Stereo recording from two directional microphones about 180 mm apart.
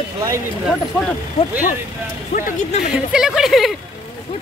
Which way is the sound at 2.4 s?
45° left (ahead or behind).